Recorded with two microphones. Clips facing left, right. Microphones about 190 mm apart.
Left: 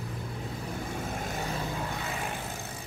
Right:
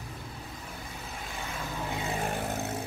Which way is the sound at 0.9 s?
50° left (ahead or behind).